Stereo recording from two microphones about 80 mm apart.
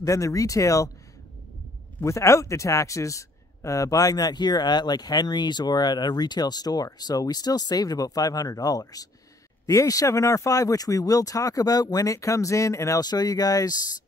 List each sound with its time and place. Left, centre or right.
0.0 s speech: left
2.0 s a man's voice: left